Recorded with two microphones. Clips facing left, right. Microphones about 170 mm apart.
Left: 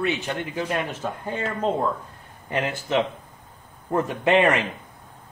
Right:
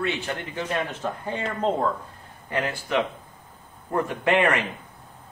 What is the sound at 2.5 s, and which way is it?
Speech, 20° left (ahead or behind).